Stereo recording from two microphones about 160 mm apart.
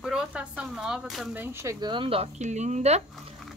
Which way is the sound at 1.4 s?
15° right (ahead or behind).